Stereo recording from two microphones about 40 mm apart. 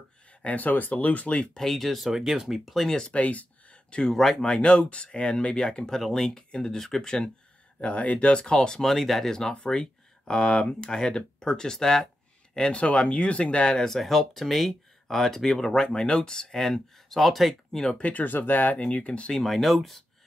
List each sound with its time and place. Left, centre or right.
0.4 s speech: left
1.5 s speech: centre
2.0 s speech: centre
3.1 s speech: left
4.1 s speech: centre
4.6 s speech: left
5.9 s speech: centre
7.8 s speech: left; by 8.9 s centre
8.9 s speech: centre; by 13.8 s left
13.8 s speech: centre
17.9 s speech: left
19.3 s speech: centre